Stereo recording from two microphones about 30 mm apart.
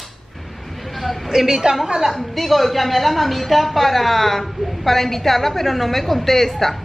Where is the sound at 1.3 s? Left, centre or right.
Centre.